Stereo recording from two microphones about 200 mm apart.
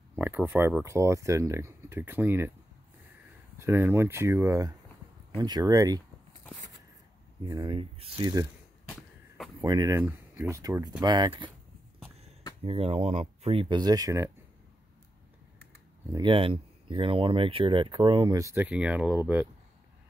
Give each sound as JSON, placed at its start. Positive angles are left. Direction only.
{"t": 0.2, "sound": "speech", "side_deg": -10}
{"t": 3.5, "sound": "speech", "side_deg": -10}
{"t": 7.4, "sound": "speech", "side_deg": -25}
{"t": 9.6, "sound": "speech", "side_deg": -20}
{"t": 12.6, "sound": "speech", "side_deg": -30}
{"t": 16.1, "sound": "speech", "side_deg": -25}